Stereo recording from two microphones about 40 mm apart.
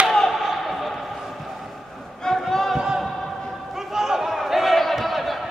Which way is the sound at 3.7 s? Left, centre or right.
Centre.